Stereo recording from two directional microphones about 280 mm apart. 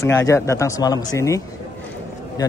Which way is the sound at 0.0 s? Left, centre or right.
Centre.